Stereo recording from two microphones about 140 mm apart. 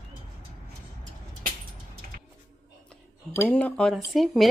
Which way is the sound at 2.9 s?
10° left (ahead or behind).